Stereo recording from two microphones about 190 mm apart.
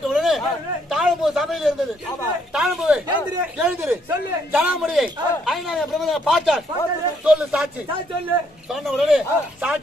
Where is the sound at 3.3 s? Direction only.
5° right (ahead or behind).